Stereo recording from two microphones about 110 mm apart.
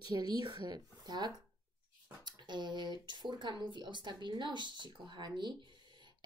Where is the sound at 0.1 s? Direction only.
40° right (ahead or behind).